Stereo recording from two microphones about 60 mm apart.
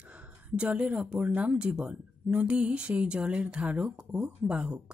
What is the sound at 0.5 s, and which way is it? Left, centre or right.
Speech, centre.